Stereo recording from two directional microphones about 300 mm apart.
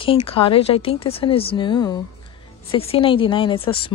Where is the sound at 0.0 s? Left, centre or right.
Centre.